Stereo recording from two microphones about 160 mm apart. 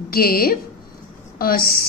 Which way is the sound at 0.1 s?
70° left (ahead or behind).